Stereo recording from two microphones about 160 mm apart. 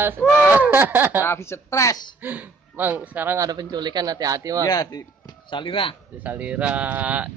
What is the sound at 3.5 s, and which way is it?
A man's voice, 25° right (ahead or behind).